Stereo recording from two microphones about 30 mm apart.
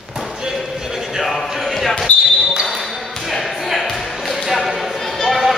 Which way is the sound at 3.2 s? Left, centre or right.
Centre.